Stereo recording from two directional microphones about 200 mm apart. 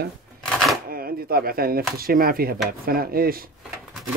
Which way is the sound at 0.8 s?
45° right (ahead or behind).